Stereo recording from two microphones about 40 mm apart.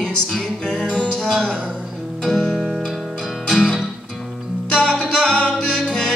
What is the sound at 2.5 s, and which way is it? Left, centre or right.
Music, centre.